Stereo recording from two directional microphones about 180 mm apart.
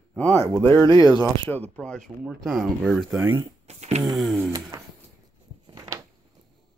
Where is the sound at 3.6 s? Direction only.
40° right (ahead or behind).